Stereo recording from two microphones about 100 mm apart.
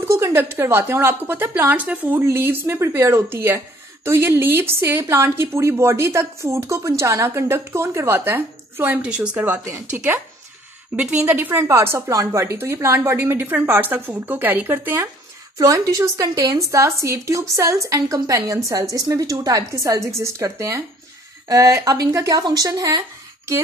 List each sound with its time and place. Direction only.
0.0 s a woman's voice: 30° right (ahead or behind)
9.7 s a woman's voice: 25° right (ahead or behind)
11.0 s a woman's voice: 10° right (ahead or behind)
15.5 s a woman's voice: 35° right (ahead or behind)